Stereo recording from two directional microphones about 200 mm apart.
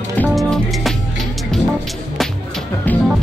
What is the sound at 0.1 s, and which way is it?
Music, 5° left (ahead or behind).